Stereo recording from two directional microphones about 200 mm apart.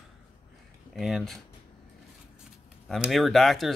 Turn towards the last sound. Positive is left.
turn(degrees=0)  # may be behind; listen again after turning